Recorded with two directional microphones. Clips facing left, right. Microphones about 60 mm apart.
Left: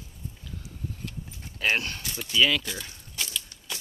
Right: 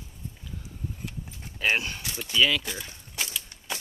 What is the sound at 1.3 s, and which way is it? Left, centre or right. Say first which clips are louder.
Horse: even; centre.